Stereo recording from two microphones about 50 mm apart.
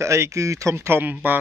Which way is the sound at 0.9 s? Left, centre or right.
Right.